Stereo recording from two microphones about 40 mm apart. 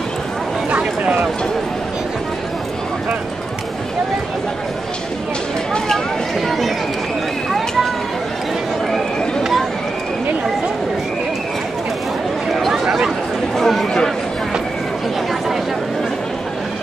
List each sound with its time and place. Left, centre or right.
0.7 s a sound: right
12.8 s chatter: centre
13.6 s chatter: centre